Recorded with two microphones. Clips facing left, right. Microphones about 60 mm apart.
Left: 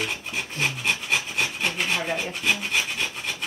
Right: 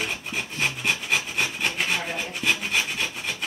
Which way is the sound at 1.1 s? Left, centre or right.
Centre.